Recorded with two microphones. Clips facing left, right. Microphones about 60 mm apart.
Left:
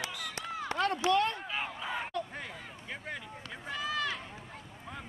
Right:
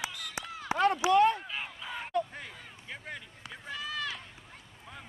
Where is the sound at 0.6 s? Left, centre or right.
Centre.